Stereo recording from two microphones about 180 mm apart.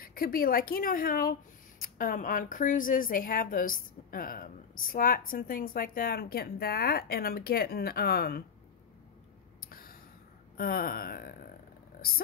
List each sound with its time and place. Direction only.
0.0 s a woman's voice: 55° left (ahead or behind)
9.7 s a sound: 55° left (ahead or behind)
10.6 s a woman's voice: 55° left (ahead or behind)